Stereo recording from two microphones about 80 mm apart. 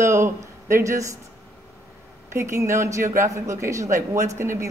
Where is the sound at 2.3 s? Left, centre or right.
Right.